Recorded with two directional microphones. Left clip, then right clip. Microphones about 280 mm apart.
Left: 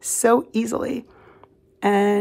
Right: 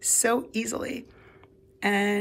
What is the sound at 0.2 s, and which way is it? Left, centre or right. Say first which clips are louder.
Speech: left 10 dB; centre.